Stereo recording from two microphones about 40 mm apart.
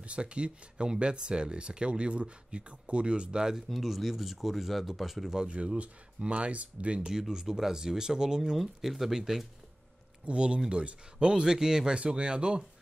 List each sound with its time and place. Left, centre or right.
0.0 s speech: right
3.6 s speech: centre
5.3 s speech: right
7.1 s speech: centre
8.4 s speech: centre
10.2 s speech: right